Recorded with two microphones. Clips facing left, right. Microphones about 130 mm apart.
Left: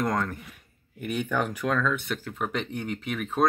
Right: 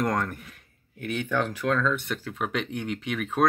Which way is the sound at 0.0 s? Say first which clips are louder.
Right 1 dB; centre (ahead or behind).